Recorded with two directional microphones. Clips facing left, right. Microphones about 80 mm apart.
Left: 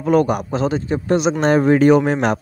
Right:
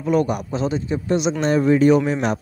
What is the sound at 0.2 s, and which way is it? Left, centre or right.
A man's voice, left.